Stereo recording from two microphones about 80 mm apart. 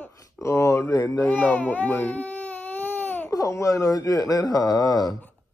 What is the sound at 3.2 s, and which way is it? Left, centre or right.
Speech, left.